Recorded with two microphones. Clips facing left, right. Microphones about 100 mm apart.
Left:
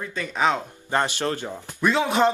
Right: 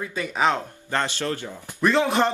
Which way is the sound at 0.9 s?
15° left (ahead or behind).